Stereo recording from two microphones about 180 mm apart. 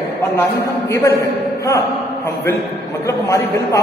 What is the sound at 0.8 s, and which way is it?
Speech, 15° left (ahead or behind).